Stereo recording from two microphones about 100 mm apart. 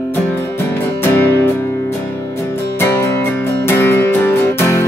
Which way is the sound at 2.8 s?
20° left (ahead or behind).